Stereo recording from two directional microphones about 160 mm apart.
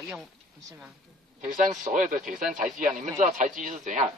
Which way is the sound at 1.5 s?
55° right (ahead or behind).